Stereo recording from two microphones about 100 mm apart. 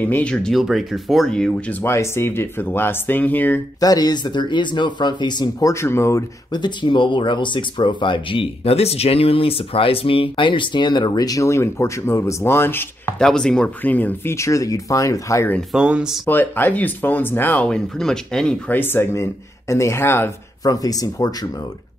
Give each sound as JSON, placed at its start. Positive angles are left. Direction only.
{"t": 0.0, "sound": "speech", "side_deg": 15}
{"t": 1.7, "sound": "speech", "side_deg": 25}
{"t": 3.8, "sound": "speech", "side_deg": 40}
{"t": 6.5, "sound": "speech", "side_deg": 50}
{"t": 13.2, "sound": "speech", "side_deg": 5}
{"t": 13.8, "sound": "speech", "side_deg": 15}
{"t": 14.3, "sound": "speech", "side_deg": 30}
{"t": 15.7, "sound": "speech", "side_deg": -10}
{"t": 16.3, "sound": "speech", "side_deg": 20}
{"t": 18.7, "sound": "speech", "side_deg": 20}
{"t": 20.6, "sound": "speech", "side_deg": 35}